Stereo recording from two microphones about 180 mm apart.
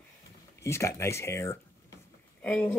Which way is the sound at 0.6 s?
15° left (ahead or behind).